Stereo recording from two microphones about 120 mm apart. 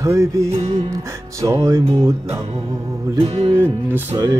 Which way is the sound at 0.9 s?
25° right (ahead or behind).